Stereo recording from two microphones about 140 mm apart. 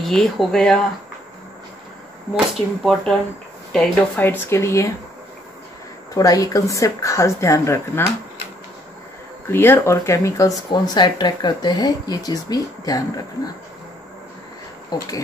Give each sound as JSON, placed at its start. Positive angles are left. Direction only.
{"t": 0.0, "sound": "speech", "side_deg": 0}
{"t": 2.3, "sound": "speech", "side_deg": 0}
{"t": 6.1, "sound": "speech", "side_deg": 25}
{"t": 9.5, "sound": "speech", "side_deg": 15}
{"t": 10.7, "sound": "speech", "side_deg": 30}
{"t": 14.9, "sound": "speech", "side_deg": 30}